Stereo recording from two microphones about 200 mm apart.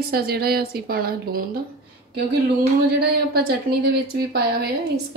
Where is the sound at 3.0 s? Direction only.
50° right (ahead or behind).